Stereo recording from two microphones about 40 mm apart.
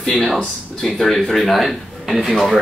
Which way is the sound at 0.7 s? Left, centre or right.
Centre.